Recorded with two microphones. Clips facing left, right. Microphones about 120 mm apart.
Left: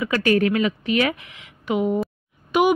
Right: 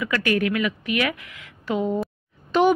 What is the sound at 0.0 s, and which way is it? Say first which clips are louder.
A woman's voice: left 3 dB; 30° left (ahead or behind).